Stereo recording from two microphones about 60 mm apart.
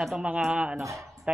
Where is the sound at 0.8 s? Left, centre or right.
Right.